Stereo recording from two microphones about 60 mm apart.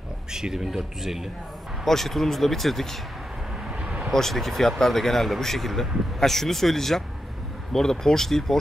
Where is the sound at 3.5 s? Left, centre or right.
Centre.